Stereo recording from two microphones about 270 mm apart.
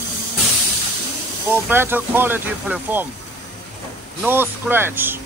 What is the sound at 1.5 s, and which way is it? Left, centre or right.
Speech, centre.